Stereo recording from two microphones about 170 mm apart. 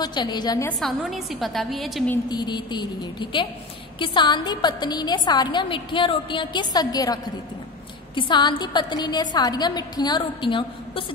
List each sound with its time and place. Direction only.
0.0 s a woman's voice: 25° left (ahead or behind)
0.7 s a woman's voice: centre (ahead or behind)
2.2 s a woman's voice: 25° left (ahead or behind)